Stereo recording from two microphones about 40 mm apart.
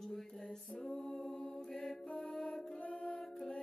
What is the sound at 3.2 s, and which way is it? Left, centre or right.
Mantra, centre.